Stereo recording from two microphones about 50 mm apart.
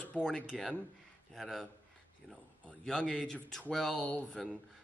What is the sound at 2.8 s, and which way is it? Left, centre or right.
Speech, centre.